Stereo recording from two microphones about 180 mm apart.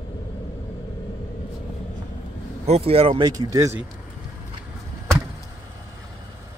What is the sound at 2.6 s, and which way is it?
Speech, 35° right (ahead or behind).